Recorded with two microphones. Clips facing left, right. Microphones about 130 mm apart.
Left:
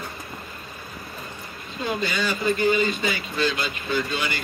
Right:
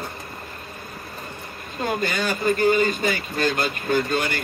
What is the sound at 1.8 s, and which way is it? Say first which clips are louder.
Speech: right 2 dB; 50° right (ahead or behind).